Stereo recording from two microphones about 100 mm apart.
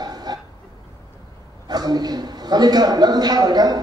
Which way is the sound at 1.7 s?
45° right (ahead or behind).